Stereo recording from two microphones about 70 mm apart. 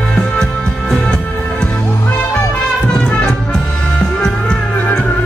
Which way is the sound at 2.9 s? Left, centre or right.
Centre.